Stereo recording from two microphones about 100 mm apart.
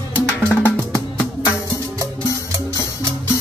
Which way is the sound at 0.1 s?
10° left (ahead or behind).